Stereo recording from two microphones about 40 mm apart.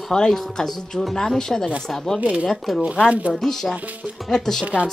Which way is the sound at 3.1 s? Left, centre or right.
Right.